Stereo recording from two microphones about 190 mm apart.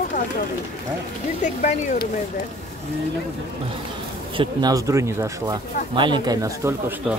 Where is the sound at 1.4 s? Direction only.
40° left (ahead or behind).